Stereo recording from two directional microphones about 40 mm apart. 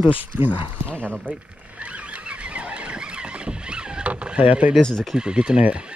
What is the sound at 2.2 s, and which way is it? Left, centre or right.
Horse, right.